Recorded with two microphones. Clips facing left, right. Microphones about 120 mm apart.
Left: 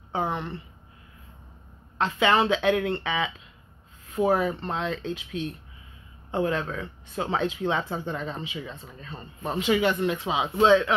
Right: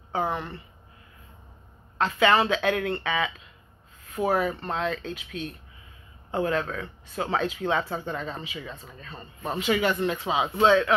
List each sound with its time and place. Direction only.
0.1 s a woman's voice: 20° left (ahead or behind)
2.0 s a woman's voice: 20° left (ahead or behind)